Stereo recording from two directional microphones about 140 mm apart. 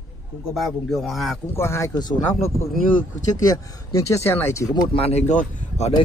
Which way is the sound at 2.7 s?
70° left (ahead or behind).